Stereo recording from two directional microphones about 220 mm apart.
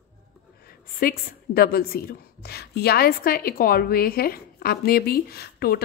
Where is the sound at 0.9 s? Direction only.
40° left (ahead or behind).